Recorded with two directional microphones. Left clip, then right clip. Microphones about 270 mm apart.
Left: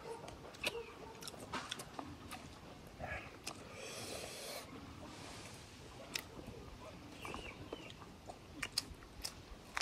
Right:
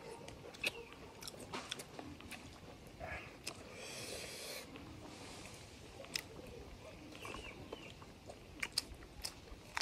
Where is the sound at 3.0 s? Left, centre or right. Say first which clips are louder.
Left 1 dB; centre.